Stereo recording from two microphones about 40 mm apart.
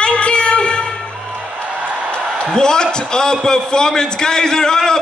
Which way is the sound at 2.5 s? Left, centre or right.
Centre.